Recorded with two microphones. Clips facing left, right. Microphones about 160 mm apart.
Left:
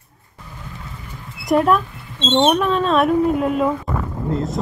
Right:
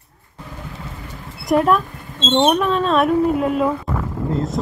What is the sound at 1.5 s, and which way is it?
Speech, centre (ahead or behind).